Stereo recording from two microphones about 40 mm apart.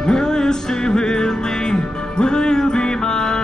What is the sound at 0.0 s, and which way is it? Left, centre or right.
Music, centre.